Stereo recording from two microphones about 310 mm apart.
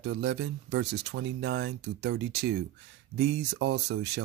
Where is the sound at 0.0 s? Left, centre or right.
Right.